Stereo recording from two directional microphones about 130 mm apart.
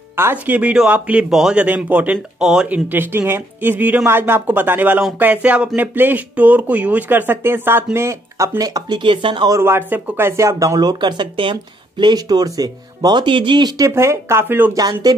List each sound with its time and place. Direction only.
0.1 s a man's voice: 15° right (ahead or behind); by 9.5 s 40° right (ahead or behind)
9.5 s speech: 20° right (ahead or behind)
14.8 s speech: 30° right (ahead or behind)